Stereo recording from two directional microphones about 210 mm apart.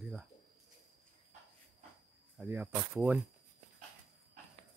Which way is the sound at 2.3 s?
10° right (ahead or behind).